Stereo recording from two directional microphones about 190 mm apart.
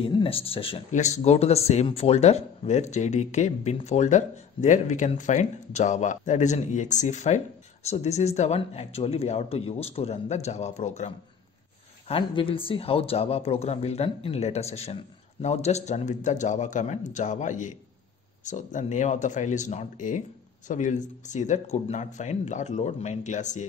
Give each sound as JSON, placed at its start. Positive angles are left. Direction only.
{"t": 0.0, "sound": "speech", "side_deg": 30}